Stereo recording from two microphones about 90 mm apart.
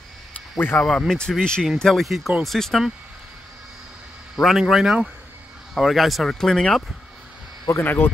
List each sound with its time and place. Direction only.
0.6 s speech: 20° left (ahead or behind)
0.8 s speech: 10° left (ahead or behind)
4.4 s speech: 5° right (ahead or behind)
7.7 s speech: 20° left (ahead or behind)